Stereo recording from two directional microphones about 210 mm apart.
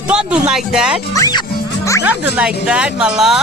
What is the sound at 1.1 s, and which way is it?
Speech, 15° left (ahead or behind).